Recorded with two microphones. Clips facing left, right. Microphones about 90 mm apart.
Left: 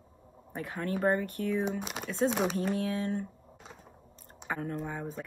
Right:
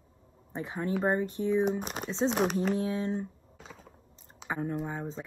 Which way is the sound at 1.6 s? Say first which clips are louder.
Right 3 dB; 45° right (ahead or behind).